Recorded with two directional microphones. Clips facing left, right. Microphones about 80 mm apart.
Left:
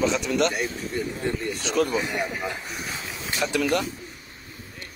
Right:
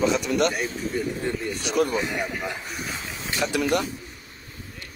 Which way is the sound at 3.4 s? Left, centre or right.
Centre.